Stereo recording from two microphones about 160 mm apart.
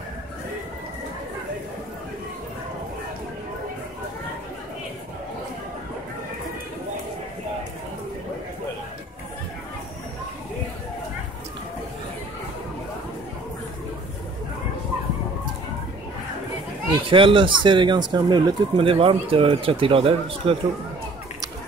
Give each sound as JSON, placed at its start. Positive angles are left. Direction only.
{"t": 17.1, "sound": "speech", "side_deg": -35}